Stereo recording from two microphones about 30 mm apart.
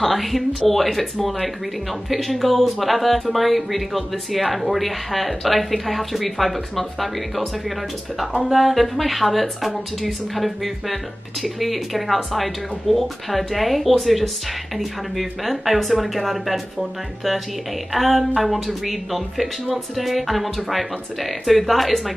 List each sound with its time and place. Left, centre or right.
0.0 s speech: centre
2.1 s speech: centre
8.5 s speech: centre
17.9 s speech: centre